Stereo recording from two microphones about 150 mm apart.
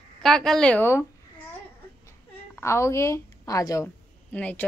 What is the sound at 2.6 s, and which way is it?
A woman's voice, 20° left (ahead or behind).